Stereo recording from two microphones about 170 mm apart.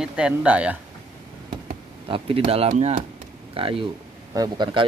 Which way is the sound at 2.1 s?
35° right (ahead or behind).